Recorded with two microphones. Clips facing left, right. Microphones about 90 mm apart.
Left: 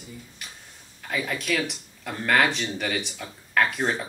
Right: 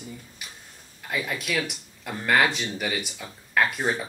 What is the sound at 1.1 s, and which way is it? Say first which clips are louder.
Speech: left 1 dB; 5° right (ahead or behind).